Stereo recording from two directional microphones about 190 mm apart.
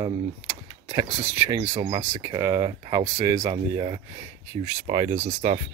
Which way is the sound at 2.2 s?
20° right (ahead or behind).